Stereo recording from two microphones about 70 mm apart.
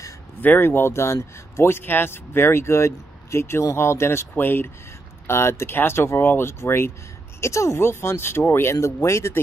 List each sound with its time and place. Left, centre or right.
0.4 s speech: left